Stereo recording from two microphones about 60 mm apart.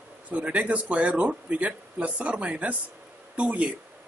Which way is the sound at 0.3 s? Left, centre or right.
Right.